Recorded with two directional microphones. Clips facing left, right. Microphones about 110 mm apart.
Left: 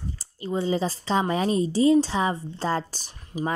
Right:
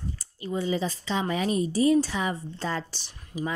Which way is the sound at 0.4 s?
30° left (ahead or behind).